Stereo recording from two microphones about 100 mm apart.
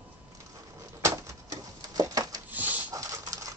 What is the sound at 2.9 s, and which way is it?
Dog, 35° right (ahead or behind).